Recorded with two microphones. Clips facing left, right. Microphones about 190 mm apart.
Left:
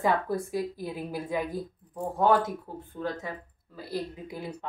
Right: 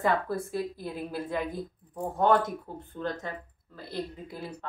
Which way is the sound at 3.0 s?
5° left (ahead or behind).